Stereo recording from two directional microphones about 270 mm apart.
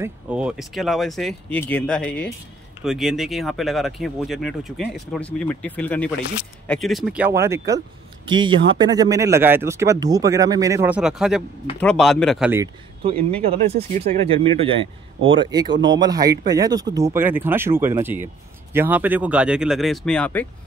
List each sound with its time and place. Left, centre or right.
0.0 s speech: centre
13.4 s speech: right
15.7 s speech: right
16.0 s speech: centre